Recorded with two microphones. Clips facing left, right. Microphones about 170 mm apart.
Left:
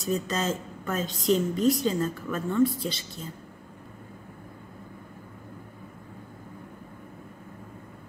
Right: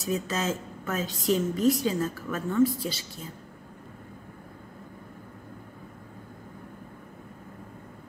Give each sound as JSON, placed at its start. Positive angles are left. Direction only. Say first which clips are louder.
{"t": 0.0, "sound": "a woman's voice", "louder": "left 1 dB", "side_deg": -5}